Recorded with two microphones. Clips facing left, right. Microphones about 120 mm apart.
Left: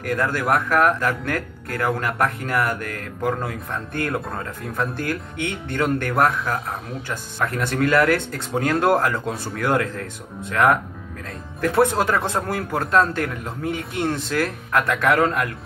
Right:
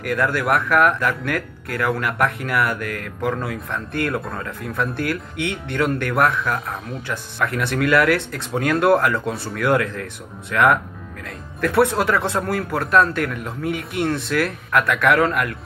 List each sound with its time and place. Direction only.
0.0 s speech: 30° left (ahead or behind)
7.3 s speech: 30° left (ahead or behind)